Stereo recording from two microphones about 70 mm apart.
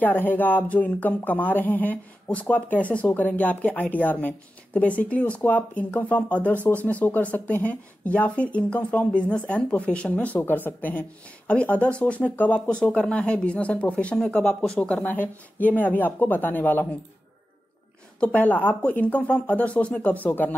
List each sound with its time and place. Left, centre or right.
0.0 s speech: left
18.2 s speech: left